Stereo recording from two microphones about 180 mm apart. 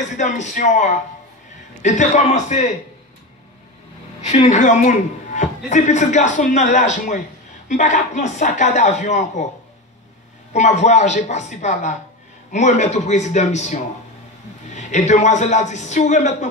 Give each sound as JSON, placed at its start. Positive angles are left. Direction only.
{"t": 0.0, "sound": "a man's voice", "side_deg": 40}
{"t": 4.2, "sound": "a man's voice", "side_deg": 40}
{"t": 10.5, "sound": "speech", "side_deg": 40}